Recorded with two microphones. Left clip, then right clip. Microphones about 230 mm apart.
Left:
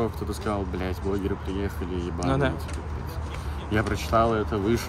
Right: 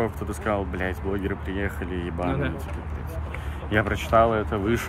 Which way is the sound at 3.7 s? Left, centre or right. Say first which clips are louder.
Right 3 dB; centre.